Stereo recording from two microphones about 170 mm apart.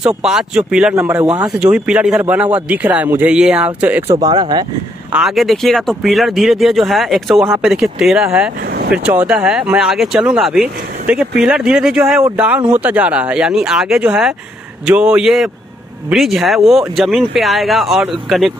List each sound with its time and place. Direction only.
0.0 s speech: 5° right (ahead or behind)
4.2 s speech: 25° right (ahead or behind)
5.1 s speech: centre (ahead or behind)
8.5 s vehicle: 60° right (ahead or behind)
8.9 s speech: 10° right (ahead or behind)